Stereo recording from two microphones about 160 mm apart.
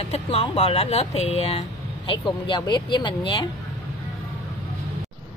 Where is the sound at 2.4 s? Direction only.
30° left (ahead or behind).